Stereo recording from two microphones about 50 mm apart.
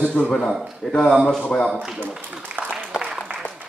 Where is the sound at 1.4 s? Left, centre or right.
Left.